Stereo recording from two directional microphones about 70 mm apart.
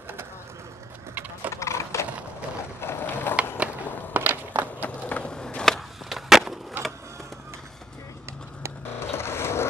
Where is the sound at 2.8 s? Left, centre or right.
Left.